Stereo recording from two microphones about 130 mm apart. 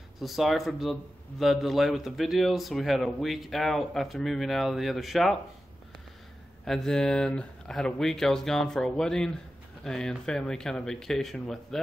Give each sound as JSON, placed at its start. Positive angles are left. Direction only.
{"t": 0.2, "sound": "a man's voice", "side_deg": 0}
{"t": 6.6, "sound": "a man's voice", "side_deg": 5}